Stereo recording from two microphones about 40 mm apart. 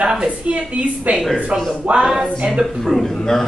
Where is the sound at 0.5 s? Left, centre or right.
Right.